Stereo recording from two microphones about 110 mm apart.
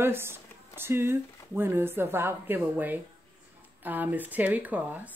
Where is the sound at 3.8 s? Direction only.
15° right (ahead or behind).